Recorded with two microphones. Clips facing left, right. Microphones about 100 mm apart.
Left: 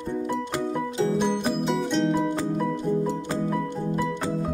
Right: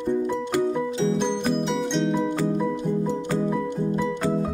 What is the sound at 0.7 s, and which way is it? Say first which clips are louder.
Music: right 1 dB; 5° left (ahead or behind).